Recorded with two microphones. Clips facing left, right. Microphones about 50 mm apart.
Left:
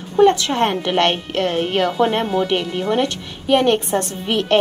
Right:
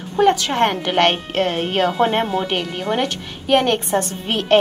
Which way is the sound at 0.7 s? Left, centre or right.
Centre.